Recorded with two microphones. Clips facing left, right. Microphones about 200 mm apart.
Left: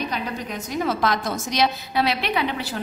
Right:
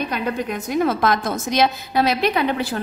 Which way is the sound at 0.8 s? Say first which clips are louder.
Right 1 dB; 50° right (ahead or behind).